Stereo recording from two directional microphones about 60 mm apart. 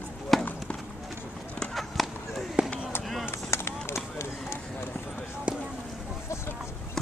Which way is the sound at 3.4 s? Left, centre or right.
Left.